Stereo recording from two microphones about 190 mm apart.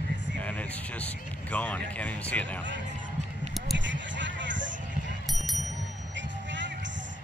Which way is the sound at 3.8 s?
75° right (ahead or behind).